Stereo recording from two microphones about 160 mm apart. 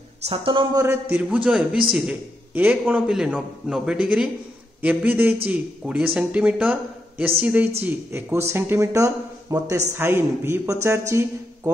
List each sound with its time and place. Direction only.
0.2 s speech: 35° right (ahead or behind)
0.7 s speech: 15° right (ahead or behind)